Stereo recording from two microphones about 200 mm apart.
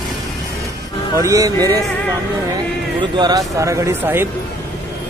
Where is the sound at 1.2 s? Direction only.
15° right (ahead or behind).